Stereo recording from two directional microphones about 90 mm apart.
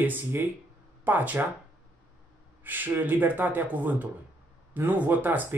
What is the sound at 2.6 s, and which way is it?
Speech, 20° right (ahead or behind).